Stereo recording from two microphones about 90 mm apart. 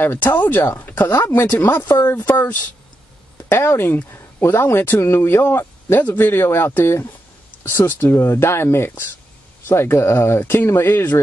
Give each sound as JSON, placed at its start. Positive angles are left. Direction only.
{"t": 0.0, "sound": "speech", "side_deg": 20}
{"t": 1.1, "sound": "speech", "side_deg": 30}